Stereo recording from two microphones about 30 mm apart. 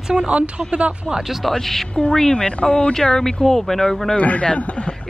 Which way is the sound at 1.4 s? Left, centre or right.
Centre.